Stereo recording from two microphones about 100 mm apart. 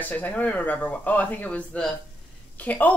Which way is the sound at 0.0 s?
15° left (ahead or behind).